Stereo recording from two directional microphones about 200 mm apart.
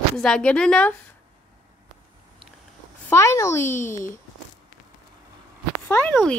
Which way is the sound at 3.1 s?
15° left (ahead or behind).